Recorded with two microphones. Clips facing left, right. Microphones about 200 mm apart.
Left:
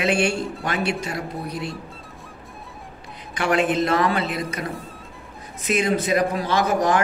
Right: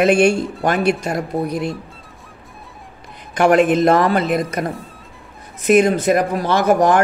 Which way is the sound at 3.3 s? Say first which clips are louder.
Right 7 dB; 50° right (ahead or behind).